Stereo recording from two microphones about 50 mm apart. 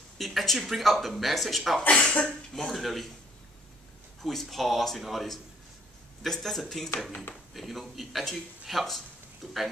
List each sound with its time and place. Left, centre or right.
0.2 s speech: centre
1.8 s speech: left
2.2 s speech: centre
4.2 s speech: centre